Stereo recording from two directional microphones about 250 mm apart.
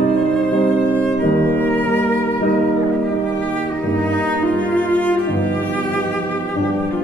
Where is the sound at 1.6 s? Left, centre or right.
Centre.